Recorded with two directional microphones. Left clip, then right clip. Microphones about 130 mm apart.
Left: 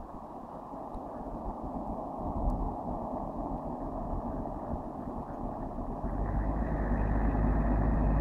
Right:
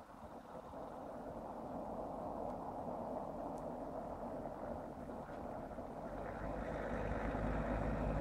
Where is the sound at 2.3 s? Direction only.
35° right (ahead or behind).